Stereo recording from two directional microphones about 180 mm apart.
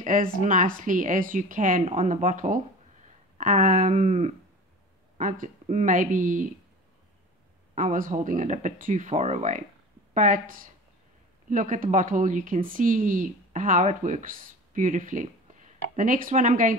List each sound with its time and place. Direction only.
0.0 s speech: 50° right (ahead or behind)
7.7 s speech: 45° right (ahead or behind)